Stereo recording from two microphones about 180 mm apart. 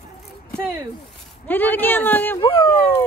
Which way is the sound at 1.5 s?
10° left (ahead or behind).